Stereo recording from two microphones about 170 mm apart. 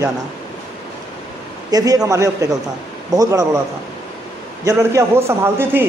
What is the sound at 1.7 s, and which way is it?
Speech, 20° right (ahead or behind).